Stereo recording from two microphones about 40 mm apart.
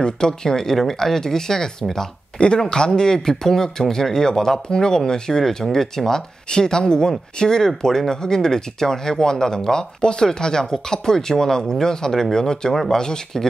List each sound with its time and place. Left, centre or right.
0.0 s speech: centre
2.3 s speech: left